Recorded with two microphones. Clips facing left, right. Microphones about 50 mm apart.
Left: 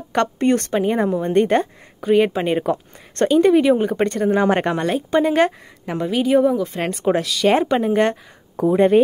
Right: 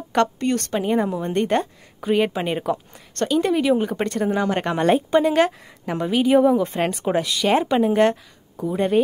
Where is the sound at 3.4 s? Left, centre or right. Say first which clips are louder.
Left 5 dB; centre.